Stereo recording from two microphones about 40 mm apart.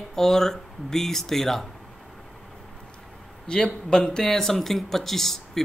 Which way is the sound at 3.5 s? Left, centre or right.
Left.